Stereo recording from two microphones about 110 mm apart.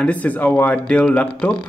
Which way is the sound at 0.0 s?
10° left (ahead or behind).